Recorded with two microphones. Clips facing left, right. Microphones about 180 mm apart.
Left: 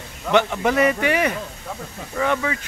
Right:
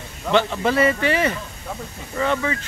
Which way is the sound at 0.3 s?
15° left (ahead or behind).